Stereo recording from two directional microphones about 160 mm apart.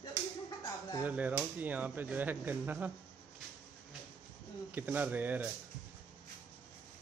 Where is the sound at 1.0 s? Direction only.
10° right (ahead or behind).